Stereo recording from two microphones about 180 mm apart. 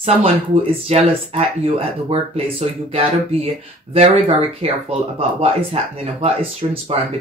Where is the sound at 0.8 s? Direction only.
35° right (ahead or behind).